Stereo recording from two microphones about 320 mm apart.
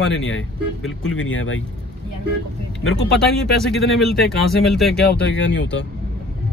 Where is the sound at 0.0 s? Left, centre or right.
Left.